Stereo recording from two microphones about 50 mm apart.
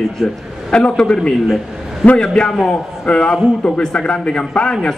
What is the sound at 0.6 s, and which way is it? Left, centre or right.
A man's voice, centre.